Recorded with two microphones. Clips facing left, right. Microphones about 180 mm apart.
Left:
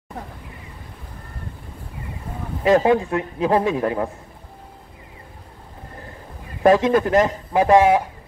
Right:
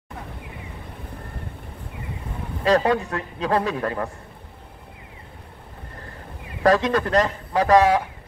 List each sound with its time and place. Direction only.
2.6 s a man's voice: 20° left (ahead or behind)
6.6 s a man's voice: 25° left (ahead or behind)